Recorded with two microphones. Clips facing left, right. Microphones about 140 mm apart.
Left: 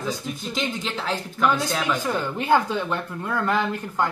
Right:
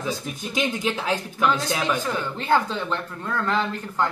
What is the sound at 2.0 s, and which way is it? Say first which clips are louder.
Speech: left 2 dB; 15° left (ahead or behind).